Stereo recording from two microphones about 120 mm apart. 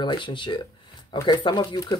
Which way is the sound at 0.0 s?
45° left (ahead or behind).